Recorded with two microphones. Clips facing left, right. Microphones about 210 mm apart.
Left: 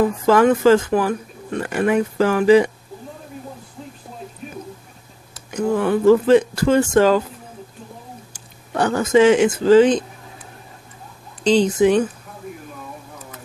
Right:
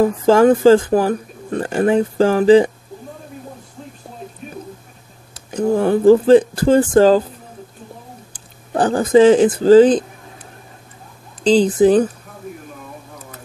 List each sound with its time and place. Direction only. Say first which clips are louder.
0.0 s speech: right 3 dB; 30° right (ahead or behind)
5.3 s speech: right 3 dB; 35° right (ahead or behind)
8.3 s speech: right 8 dB; 30° right (ahead or behind)
11.4 s speech: right 3 dB; 35° right (ahead or behind)